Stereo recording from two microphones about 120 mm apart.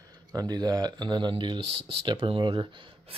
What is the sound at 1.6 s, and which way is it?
Speech, 55° right (ahead or behind).